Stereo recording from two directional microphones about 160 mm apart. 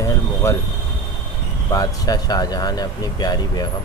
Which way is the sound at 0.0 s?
20° left (ahead or behind).